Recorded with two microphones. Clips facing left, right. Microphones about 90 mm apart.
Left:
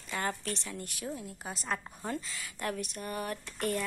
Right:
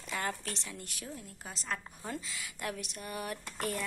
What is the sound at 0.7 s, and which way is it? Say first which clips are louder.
A woman's voice: left 5 dB; centre (ahead or behind).